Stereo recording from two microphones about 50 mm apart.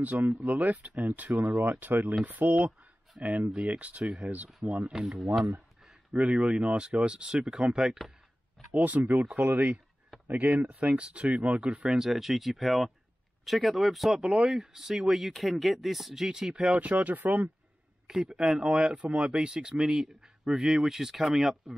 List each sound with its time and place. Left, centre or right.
0.3 s speech: right
4.9 s speech: centre
6.1 s speech: right
8.7 s speech: right
10.9 s speech: right
12.1 s speech: centre
16.7 s speech: right
18.0 s speech: centre
19.0 s speech: right; by 21.7 s centre